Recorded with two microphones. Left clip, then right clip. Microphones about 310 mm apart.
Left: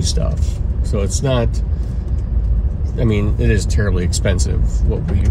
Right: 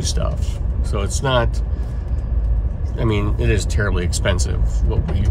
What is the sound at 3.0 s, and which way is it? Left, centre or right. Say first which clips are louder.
Speech: left 2 dB; right.